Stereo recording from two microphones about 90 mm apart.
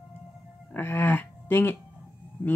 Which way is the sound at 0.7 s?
20° left (ahead or behind).